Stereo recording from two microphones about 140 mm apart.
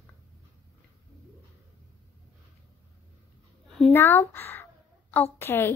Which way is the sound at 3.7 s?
5° left (ahead or behind).